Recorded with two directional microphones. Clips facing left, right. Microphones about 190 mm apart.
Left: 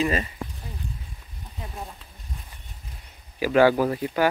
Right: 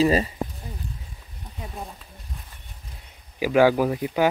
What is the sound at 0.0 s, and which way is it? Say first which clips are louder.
Speech: right 5 dB; 35° right (ahead or behind).